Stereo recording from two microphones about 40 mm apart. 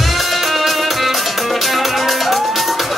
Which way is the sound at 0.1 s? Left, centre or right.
Centre.